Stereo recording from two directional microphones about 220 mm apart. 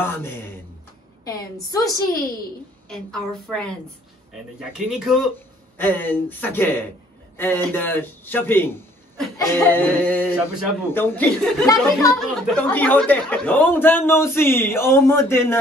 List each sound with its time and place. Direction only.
0.0 s speech: 10° left (ahead or behind)
2.9 s a woman's voice: centre (ahead or behind)
5.8 s speech: 10° left (ahead or behind)
12.1 s speech: centre (ahead or behind)